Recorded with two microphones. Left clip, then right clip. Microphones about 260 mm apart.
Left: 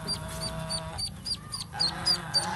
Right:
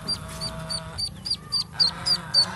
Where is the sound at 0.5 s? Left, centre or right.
Left.